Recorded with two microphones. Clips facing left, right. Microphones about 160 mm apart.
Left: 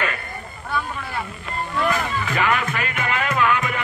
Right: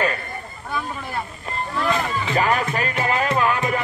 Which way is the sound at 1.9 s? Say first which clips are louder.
Right 3 dB; 30° right (ahead or behind).